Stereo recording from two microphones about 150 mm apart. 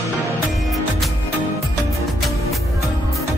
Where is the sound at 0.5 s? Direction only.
Centre (ahead or behind).